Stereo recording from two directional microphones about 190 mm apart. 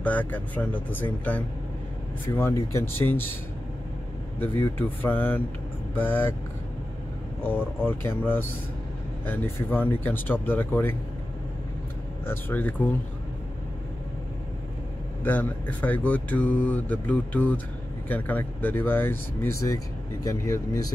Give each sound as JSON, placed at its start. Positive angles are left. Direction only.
{"t": 0.0, "sound": "speech", "side_deg": 10}
{"t": 4.4, "sound": "speech", "side_deg": 10}
{"t": 7.4, "sound": "speech", "side_deg": 10}
{"t": 9.2, "sound": "speech", "side_deg": 10}
{"t": 12.3, "sound": "speech", "side_deg": 10}
{"t": 15.2, "sound": "speech", "side_deg": 10}